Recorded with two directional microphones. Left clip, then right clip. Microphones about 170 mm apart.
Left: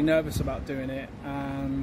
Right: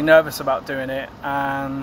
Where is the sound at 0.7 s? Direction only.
40° right (ahead or behind).